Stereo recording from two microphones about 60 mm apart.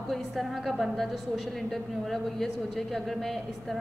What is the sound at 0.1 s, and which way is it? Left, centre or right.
A woman's voice, centre.